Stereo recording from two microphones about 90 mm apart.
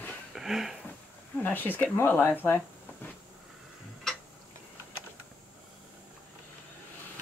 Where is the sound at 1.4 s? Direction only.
20° left (ahead or behind).